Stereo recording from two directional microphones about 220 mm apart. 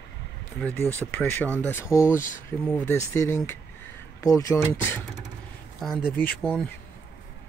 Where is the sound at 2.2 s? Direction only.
35° left (ahead or behind).